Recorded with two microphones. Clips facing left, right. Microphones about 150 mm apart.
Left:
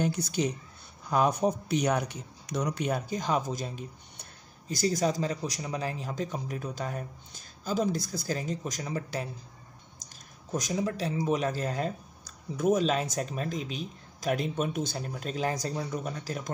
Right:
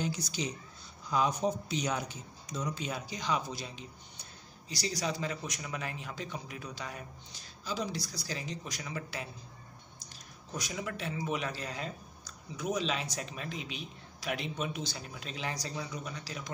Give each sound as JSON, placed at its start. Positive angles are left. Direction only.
{"t": 0.0, "sound": "speech", "side_deg": 55}
{"t": 10.0, "sound": "a sound", "side_deg": 45}
{"t": 10.5, "sound": "speech", "side_deg": 40}